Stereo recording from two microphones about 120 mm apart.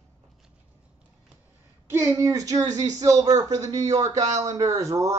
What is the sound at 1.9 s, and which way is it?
Speech, 25° right (ahead or behind).